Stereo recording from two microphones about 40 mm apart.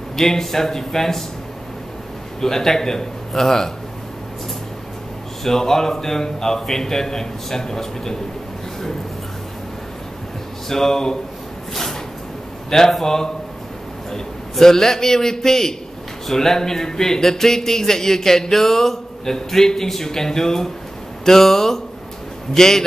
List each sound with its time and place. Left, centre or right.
0.1 s a man's voice: centre
2.4 s a man's voice: centre
5.4 s a man's voice: centre
10.7 s a man's voice: centre
12.6 s a man's voice: centre
14.5 s a man's voice: centre